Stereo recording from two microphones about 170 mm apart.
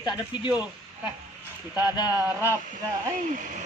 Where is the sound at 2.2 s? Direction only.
10° right (ahead or behind).